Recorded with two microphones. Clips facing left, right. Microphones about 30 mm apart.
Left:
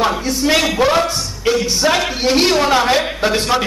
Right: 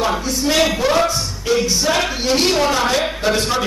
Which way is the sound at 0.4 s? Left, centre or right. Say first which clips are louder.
Left 3 dB; left.